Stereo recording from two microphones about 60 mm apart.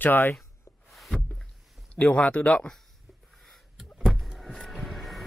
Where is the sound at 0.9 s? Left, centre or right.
Centre.